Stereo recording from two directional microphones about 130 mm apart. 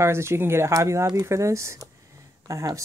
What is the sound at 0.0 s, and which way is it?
Speech, 20° right (ahead or behind).